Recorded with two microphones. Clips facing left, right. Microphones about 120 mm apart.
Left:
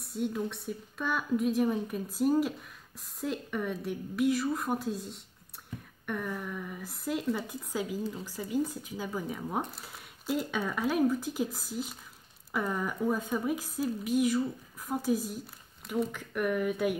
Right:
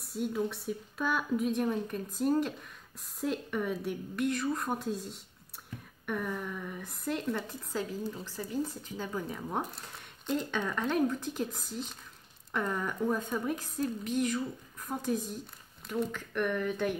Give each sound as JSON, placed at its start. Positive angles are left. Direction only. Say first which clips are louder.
{"t": 0.0, "sound": "a woman's voice", "louder": "even", "side_deg": 0}